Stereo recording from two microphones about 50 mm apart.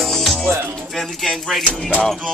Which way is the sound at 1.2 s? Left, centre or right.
Centre.